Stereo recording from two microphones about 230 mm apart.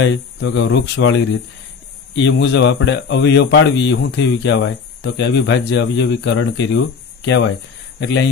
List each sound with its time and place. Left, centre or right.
0.0 s speech: left